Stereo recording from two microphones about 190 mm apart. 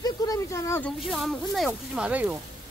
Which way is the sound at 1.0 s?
Centre (ahead or behind).